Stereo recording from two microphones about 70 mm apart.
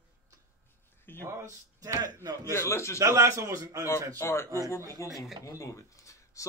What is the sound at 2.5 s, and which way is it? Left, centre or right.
Speech, left.